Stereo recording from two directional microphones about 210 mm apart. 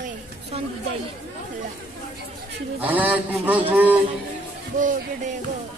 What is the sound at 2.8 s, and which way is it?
Mantra, 5° right (ahead or behind).